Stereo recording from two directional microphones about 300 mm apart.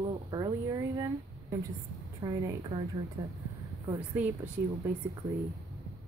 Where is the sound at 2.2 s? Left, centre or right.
Centre.